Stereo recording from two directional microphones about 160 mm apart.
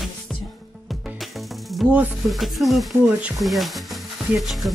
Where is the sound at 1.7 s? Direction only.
Centre (ahead or behind).